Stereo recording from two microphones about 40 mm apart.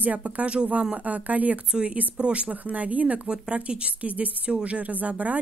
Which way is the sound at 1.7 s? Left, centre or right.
Right.